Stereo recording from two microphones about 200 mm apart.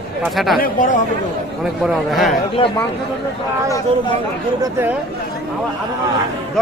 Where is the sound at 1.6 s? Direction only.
Centre (ahead or behind).